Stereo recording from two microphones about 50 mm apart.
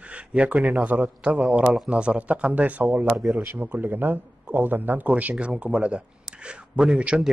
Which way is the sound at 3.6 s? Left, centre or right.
Right.